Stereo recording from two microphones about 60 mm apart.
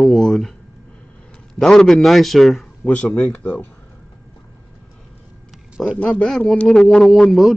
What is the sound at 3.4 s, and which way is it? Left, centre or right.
Speech, left.